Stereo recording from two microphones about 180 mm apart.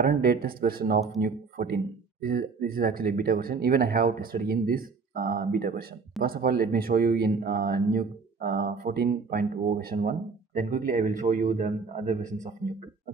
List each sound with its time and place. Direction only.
0.0 s speech: 55° right (ahead or behind)